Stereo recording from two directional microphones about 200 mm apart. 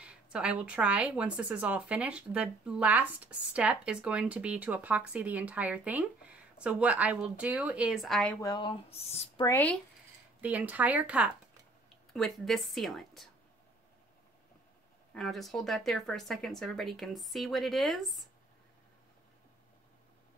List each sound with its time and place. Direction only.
0.0 s speech: 5° right (ahead or behind)
8.4 s speech: 20° left (ahead or behind)
9.5 s speech: 10° left (ahead or behind)
10.4 s speech: 5° right (ahead or behind)
15.1 s speech: centre (ahead or behind)